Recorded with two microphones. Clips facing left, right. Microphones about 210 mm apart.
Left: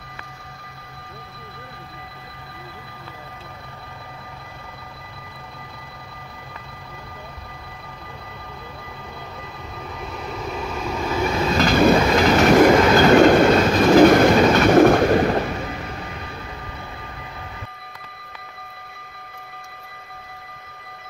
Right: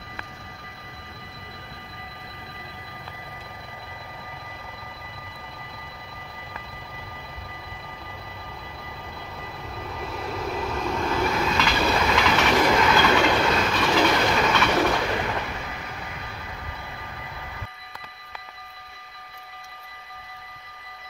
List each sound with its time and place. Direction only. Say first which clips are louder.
10.1 s vehicle: even; centre (ahead or behind)
11.5 s train: left 8 dB; 45° left (ahead or behind)